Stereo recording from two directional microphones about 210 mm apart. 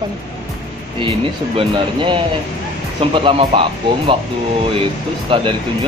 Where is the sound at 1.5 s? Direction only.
25° right (ahead or behind).